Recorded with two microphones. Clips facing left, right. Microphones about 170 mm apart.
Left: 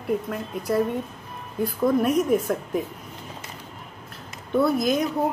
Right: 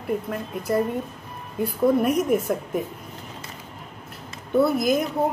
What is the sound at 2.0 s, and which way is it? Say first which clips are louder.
Speech: even; centre (ahead or behind).